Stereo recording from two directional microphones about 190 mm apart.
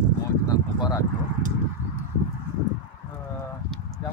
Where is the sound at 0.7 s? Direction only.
20° left (ahead or behind).